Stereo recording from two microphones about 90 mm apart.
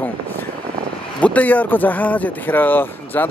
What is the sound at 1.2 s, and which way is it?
Speech, 15° left (ahead or behind).